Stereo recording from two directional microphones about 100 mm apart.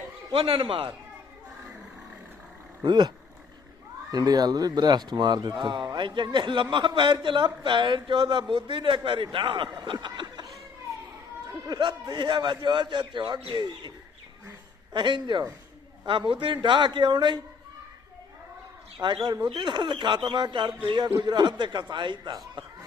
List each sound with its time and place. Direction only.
0.3 s a man's voice: 65° right (ahead or behind)
2.8 s speech: 50° right (ahead or behind)
4.1 s speech: 40° right (ahead or behind)
11.6 s speech: 45° right (ahead or behind)
18.9 s speech: 50° right (ahead or behind)